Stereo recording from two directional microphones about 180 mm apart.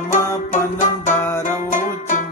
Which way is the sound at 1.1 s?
15° left (ahead or behind).